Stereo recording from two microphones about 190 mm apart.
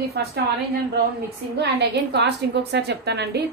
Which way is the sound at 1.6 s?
60° right (ahead or behind).